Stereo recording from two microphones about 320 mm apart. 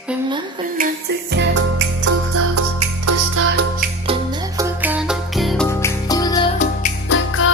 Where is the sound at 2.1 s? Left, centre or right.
Right.